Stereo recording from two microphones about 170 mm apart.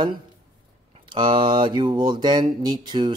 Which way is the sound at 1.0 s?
30° right (ahead or behind).